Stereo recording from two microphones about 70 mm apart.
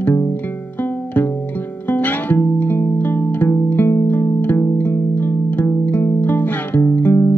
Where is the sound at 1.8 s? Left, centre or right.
Left.